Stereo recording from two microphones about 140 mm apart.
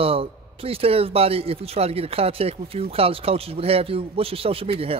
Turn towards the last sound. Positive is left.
turn(degrees=-45)  # may be behind; listen again after turning